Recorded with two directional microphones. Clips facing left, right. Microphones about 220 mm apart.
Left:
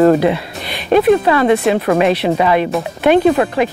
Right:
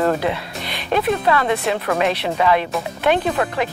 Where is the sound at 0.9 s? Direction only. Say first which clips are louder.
Left 8 dB; 45° left (ahead or behind).